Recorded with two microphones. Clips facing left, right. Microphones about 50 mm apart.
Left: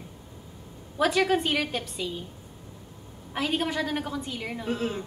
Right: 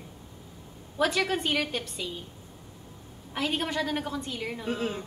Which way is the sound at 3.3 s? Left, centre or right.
Centre.